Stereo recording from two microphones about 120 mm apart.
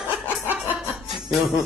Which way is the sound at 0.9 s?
Centre (ahead or behind).